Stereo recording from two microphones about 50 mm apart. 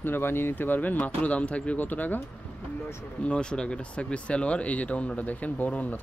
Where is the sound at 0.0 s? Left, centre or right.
Left.